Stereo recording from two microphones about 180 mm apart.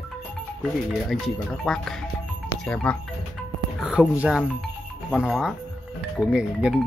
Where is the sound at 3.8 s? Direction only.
5° right (ahead or behind).